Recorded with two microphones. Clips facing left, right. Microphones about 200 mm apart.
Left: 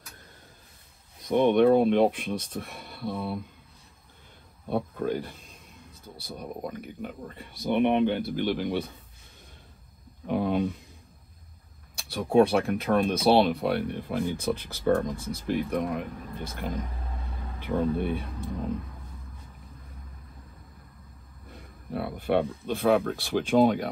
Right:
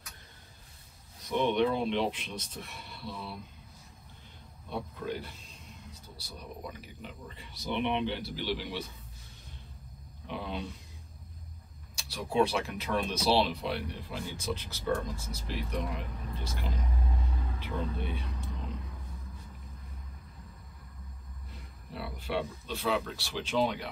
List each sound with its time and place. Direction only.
1.2 s speech: 55° left (ahead or behind)
4.6 s speech: 55° left (ahead or behind)
10.2 s speech: 50° left (ahead or behind)
11.9 s speech: 55° left (ahead or behind)
21.5 s speech: 55° left (ahead or behind)